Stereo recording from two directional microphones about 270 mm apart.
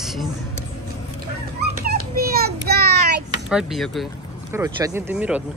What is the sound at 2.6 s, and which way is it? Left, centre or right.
Child singing, right.